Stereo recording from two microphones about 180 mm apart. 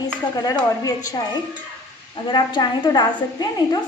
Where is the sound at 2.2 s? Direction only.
25° left (ahead or behind).